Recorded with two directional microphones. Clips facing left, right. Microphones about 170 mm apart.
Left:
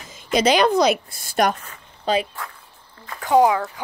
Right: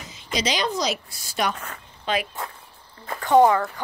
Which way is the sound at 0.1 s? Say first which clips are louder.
Left 8 dB; 55° left (ahead or behind).